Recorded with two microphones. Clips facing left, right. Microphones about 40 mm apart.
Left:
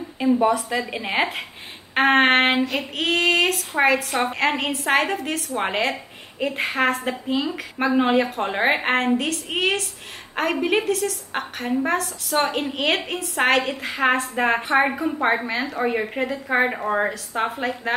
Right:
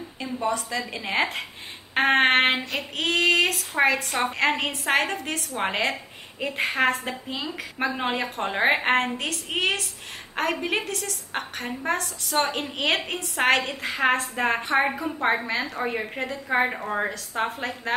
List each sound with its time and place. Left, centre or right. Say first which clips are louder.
0.2 s a woman's voice: left 8 dB; centre
2.0 s a woman's voice: left 3 dB; centre